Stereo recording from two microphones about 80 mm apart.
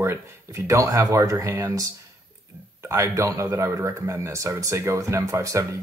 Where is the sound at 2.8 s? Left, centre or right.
Right.